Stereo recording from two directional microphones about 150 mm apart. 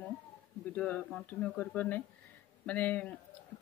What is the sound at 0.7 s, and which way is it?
Speech, 10° left (ahead or behind).